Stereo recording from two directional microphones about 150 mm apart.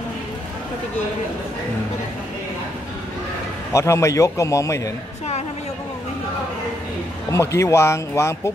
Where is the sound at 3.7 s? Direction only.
20° left (ahead or behind).